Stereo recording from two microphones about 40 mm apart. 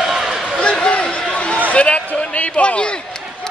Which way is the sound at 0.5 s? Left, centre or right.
Left.